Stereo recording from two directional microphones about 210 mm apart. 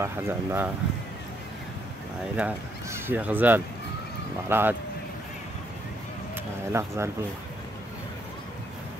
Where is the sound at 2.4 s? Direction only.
10° right (ahead or behind).